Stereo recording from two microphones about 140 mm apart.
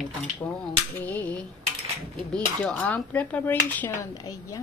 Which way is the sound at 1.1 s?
10° left (ahead or behind).